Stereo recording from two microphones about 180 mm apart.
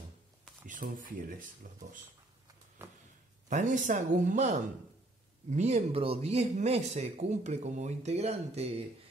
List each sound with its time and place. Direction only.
0.7 s speech: 45° right (ahead or behind)
2.8 s a sound: 15° right (ahead or behind)
3.4 s speech: 45° right (ahead or behind)